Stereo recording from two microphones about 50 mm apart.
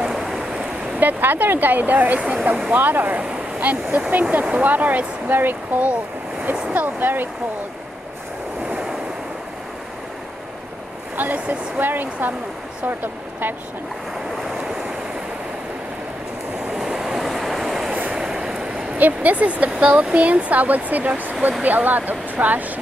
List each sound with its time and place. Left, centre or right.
0.0 s waves: centre
0.9 s speech: right
2.1 s speech: right
2.7 s speech: right
11.3 s speech: right
11.8 s speech: right
16.7 s vehicle: centre
18.9 s speech: right